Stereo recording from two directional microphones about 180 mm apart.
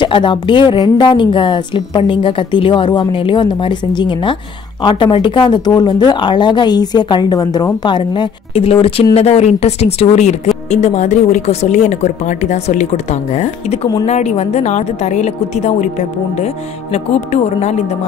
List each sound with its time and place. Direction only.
0.0 s a woman's voice: 25° left (ahead or behind)